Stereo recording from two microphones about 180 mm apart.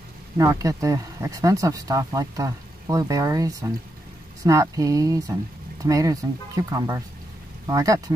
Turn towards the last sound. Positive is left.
turn(degrees=-20)  # may be behind; listen again after turning